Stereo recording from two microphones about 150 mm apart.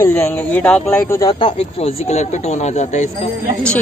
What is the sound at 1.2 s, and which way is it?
Speech, 30° left (ahead or behind).